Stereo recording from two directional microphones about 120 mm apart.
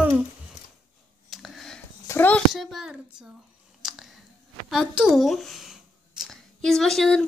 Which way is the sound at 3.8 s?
5° right (ahead or behind).